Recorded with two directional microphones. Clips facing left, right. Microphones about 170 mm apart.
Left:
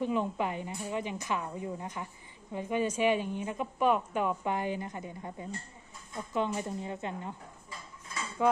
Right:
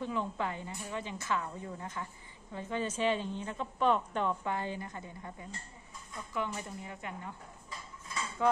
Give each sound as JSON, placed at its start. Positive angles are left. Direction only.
{"t": 0.0, "sound": "a woman's voice", "side_deg": 15}
{"t": 8.4, "sound": "a woman's voice", "side_deg": 15}